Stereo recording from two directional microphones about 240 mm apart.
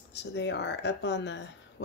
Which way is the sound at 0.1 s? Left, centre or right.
Left.